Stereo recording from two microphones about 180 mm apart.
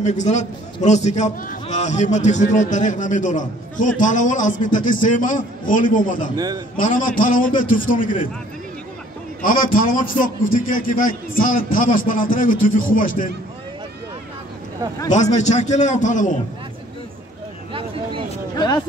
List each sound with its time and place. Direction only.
0.0 s a man's voice: 40° left (ahead or behind)
6.3 s a man's voice: 20° right (ahead or behind)
6.8 s a man's voice: 50° left (ahead or behind)
9.4 s a man's voice: 50° left (ahead or behind)
15.3 s a man's voice: 40° left (ahead or behind)